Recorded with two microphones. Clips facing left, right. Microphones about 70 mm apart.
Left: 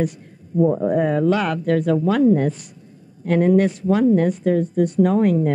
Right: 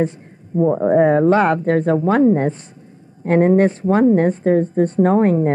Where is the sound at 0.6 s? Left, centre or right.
Right.